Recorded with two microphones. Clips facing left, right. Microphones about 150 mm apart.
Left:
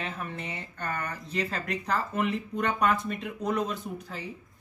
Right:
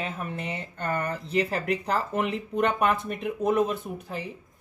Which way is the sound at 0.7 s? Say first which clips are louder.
Right 6 dB; 30° right (ahead or behind).